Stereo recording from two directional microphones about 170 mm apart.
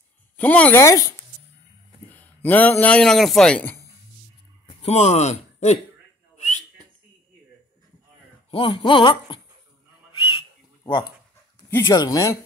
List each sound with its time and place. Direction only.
0.4 s speech: 10° left (ahead or behind)
2.1 s speech: 10° left (ahead or behind)
4.6 s speech: 40° left (ahead or behind)
6.3 s whistling: 40° left (ahead or behind)
8.5 s a sound: 30° left (ahead or behind)
10.1 s whistle: 30° left (ahead or behind)
11.7 s speech: 20° left (ahead or behind)